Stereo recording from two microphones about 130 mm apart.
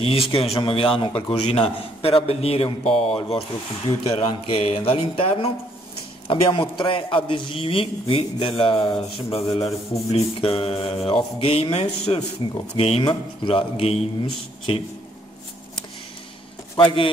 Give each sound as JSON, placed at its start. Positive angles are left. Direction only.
{"t": 0.0, "sound": "mantra", "side_deg": 45}
{"t": 6.2, "sound": "a man's voice", "side_deg": 40}
{"t": 10.1, "sound": "mantra", "side_deg": 45}
{"t": 16.7, "sound": "a man's voice", "side_deg": 40}